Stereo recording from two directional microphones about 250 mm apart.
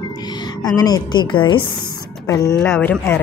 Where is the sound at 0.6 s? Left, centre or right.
Centre.